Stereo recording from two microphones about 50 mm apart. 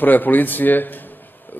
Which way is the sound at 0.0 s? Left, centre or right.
Left.